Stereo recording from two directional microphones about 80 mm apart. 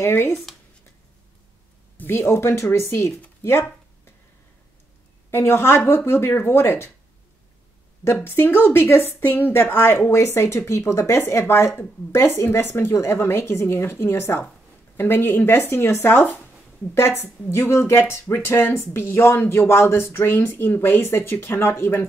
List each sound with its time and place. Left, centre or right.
0.0 s speech: left
0.3 s speech: centre
2.0 s speech: left
3.4 s a sound: left
5.3 s a woman's voice: left
8.0 s a woman's voice: left